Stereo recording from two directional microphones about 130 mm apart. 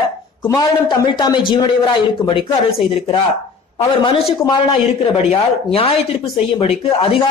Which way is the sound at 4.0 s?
45° left (ahead or behind).